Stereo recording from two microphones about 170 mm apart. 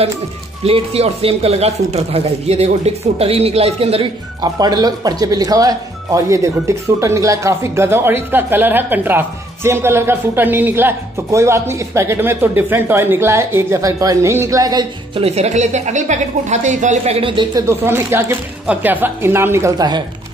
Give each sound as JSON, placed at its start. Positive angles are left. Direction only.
{"t": 0.7, "sound": "speech", "side_deg": -35}
{"t": 4.4, "sound": "speech", "side_deg": -25}
{"t": 15.2, "sound": "a woman's voice", "side_deg": -40}
{"t": 17.6, "sound": "speech", "side_deg": -15}